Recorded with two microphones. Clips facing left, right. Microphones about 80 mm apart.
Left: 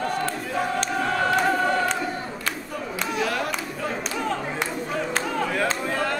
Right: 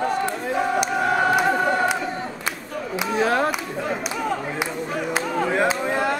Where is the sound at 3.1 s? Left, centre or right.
Right.